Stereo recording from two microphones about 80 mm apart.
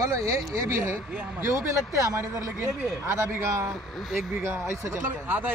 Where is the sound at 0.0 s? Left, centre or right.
Right.